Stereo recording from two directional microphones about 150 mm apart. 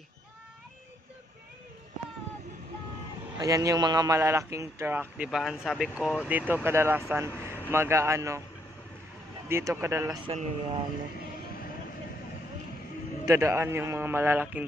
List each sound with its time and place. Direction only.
3.3 s a man's voice: 25° right (ahead or behind)
9.5 s a man's voice: 15° right (ahead or behind)
10.2 s speech: 35° right (ahead or behind)
13.2 s a man's voice: 20° right (ahead or behind)